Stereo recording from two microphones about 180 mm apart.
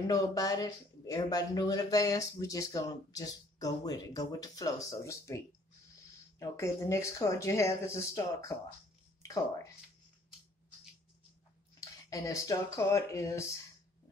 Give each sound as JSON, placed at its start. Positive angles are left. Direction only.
{"t": 0.1, "sound": "speech", "side_deg": 20}
{"t": 6.4, "sound": "speech", "side_deg": 15}
{"t": 11.8, "sound": "speech", "side_deg": 20}